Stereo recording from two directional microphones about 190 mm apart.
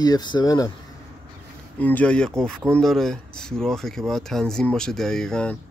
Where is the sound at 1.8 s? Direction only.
10° left (ahead or behind).